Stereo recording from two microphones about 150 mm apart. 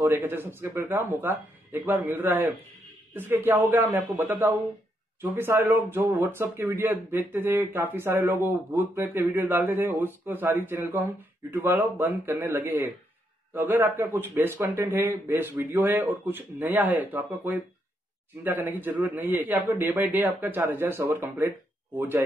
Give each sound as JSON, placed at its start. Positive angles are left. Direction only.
{"t": 0.0, "sound": "speech", "side_deg": -15}